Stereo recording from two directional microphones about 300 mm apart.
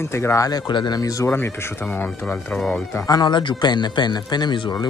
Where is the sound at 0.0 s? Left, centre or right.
Centre.